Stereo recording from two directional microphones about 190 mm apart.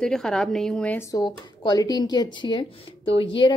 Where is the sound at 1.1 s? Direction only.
20° left (ahead or behind).